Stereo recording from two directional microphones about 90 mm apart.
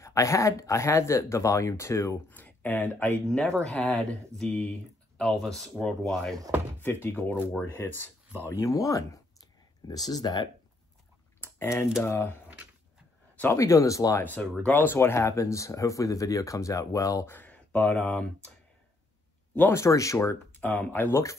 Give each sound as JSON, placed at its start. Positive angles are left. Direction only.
{"t": 0.0, "sound": "speech", "side_deg": 35}
{"t": 2.2, "sound": "speech", "side_deg": 20}
{"t": 3.3, "sound": "speech", "side_deg": 10}
{"t": 6.8, "sound": "speech", "side_deg": 25}
{"t": 11.4, "sound": "typing", "side_deg": 25}
{"t": 12.0, "sound": "speech", "side_deg": 25}
{"t": 13.5, "sound": "speech", "side_deg": 35}
{"t": 14.2, "sound": "speech", "side_deg": 15}
{"t": 17.3, "sound": "speech", "side_deg": 20}
{"t": 19.7, "sound": "speech", "side_deg": 35}
{"t": 20.5, "sound": "speech", "side_deg": 20}